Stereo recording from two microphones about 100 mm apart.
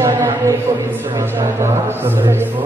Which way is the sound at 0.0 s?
25° right (ahead or behind).